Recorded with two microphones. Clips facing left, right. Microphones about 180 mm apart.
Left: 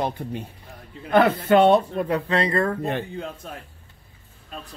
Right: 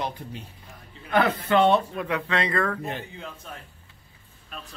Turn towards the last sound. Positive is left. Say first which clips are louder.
# left 7 dB
turn(degrees=60)  # may be behind; listen again after turning